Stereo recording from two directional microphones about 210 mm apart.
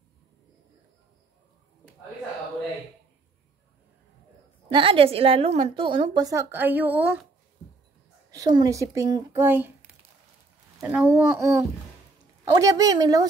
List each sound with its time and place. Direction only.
4.7 s a woman's voice: 25° right (ahead or behind); by 7.2 s 5° right (ahead or behind)
8.3 s speech: 20° right (ahead or behind)
10.8 s speech: 5° right (ahead or behind)